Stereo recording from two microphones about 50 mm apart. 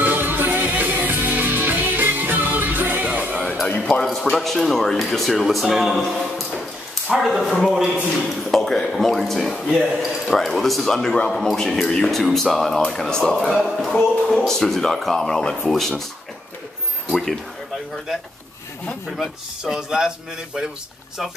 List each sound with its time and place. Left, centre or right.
0.0 s music: right
4.0 s a man's voice: centre
13.5 s a man's voice: centre
14.2 s a man's voice: centre
17.1 s a man's voice: centre
19.6 s speech: centre